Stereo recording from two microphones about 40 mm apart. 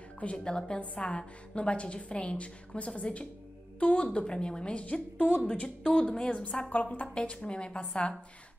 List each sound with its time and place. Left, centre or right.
0.4 s a woman's voice: left
6.3 s a woman's voice: left
7.2 s a woman's voice: left